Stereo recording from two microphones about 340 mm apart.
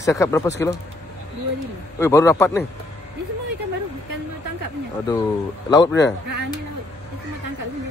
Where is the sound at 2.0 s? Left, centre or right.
Centre.